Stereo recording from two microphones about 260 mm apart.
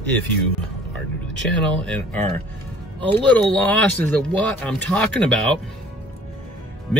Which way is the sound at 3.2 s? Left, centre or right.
Centre.